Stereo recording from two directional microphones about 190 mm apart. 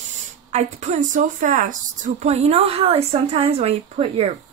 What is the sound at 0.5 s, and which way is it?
A woman's voice, 35° right (ahead or behind).